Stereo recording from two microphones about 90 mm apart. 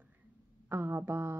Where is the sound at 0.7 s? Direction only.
25° right (ahead or behind).